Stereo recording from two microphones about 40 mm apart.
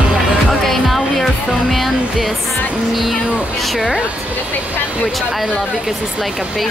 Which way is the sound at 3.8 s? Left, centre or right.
Right.